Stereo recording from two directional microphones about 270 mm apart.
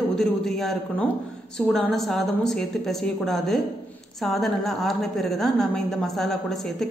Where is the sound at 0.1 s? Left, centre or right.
Centre.